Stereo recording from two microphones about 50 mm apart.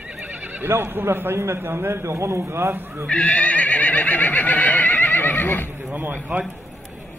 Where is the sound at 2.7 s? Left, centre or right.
Right.